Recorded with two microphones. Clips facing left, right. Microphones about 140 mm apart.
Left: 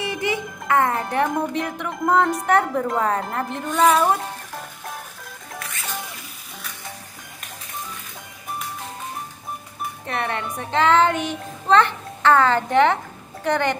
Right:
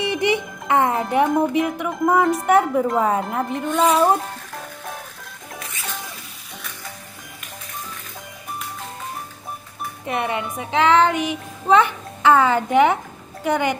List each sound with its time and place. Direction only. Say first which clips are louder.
0.0 s music: right 4 dB; 20° right (ahead or behind)
1.1 s a woman's voice: right 4 dB; 5° right (ahead or behind)
10.0 s speech: right 3 dB; 15° right (ahead or behind)
10.5 s a child's voice: right 1 dB; centre (ahead or behind)